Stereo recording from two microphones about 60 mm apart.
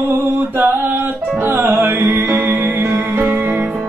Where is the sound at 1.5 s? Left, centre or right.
Right.